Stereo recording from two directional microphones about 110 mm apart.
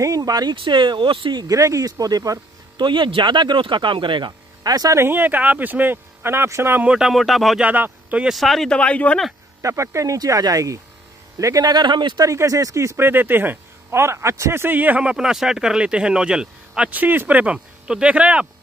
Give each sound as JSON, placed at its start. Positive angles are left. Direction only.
{"t": 0.0, "sound": "speech", "side_deg": -35}
{"t": 2.8, "sound": "speech", "side_deg": -50}
{"t": 4.6, "sound": "speech", "side_deg": -35}
{"t": 6.9, "sound": "speech", "side_deg": -5}
{"t": 7.6, "sound": "speech", "side_deg": -15}
{"t": 9.6, "sound": "speech", "side_deg": -30}
{"t": 12.3, "sound": "speech", "side_deg": -30}